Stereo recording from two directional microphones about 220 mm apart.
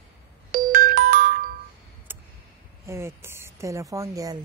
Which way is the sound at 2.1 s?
10° right (ahead or behind).